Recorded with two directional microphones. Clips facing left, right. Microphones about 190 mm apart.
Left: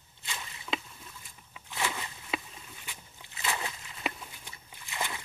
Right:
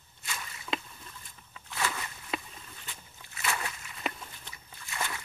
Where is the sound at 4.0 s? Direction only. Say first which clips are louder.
Even; 5° left (ahead or behind).